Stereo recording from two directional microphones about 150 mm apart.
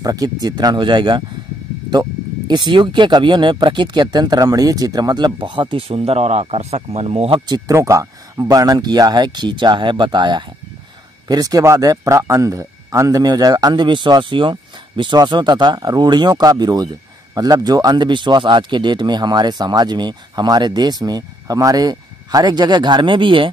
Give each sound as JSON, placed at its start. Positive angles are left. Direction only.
{"t": 0.0, "sound": "speech", "side_deg": -25}